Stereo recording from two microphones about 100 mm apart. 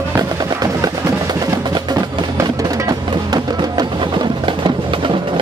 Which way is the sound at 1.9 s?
35° right (ahead or behind).